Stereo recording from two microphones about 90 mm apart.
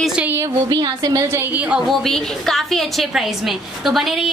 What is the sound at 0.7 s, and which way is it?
Speech, 50° right (ahead or behind).